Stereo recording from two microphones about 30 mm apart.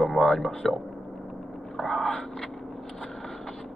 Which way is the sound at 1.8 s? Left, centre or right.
Centre.